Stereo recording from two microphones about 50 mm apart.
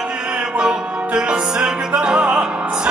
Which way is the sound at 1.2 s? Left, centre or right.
Right.